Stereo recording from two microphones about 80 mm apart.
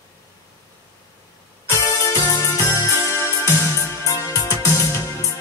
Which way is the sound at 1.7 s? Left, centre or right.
Left.